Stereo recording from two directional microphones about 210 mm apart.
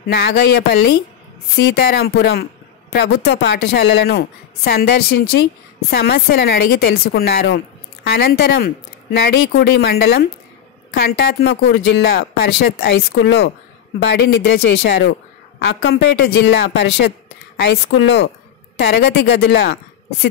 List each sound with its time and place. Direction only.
0.1 s speech: 50° left (ahead or behind)